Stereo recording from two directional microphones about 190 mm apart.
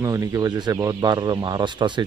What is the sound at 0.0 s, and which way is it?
Speech, 15° right (ahead or behind).